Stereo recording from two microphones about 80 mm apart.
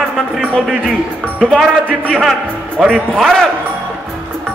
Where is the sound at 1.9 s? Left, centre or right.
Centre.